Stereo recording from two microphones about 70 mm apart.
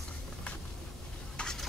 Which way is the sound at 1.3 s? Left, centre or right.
Centre.